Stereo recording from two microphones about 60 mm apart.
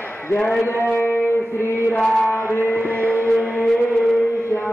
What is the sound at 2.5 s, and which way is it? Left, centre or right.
Music, left.